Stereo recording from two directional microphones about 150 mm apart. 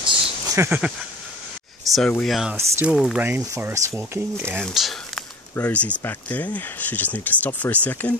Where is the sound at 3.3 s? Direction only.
20° right (ahead or behind).